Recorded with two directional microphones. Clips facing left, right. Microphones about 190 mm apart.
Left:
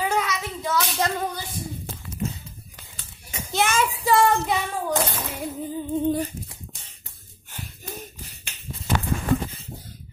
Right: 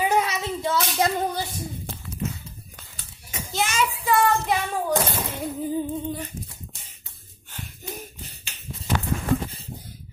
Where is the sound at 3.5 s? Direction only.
55° left (ahead or behind).